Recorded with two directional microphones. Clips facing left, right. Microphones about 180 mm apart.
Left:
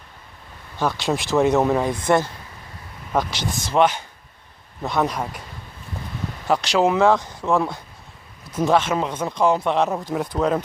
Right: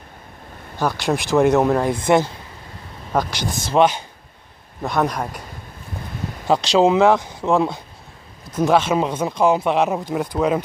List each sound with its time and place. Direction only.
0.7 s speech: centre (ahead or behind)
3.1 s speech: centre (ahead or behind)
3.7 s speech: 15° right (ahead or behind)
4.8 s speech: 5° left (ahead or behind)
6.4 s speech: 25° right (ahead or behind)
8.5 s speech: 5° left (ahead or behind)
8.7 s speech: 15° right (ahead or behind)